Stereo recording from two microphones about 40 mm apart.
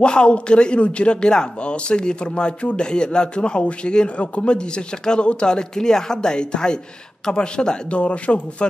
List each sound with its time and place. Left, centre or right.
0.0 s speech: left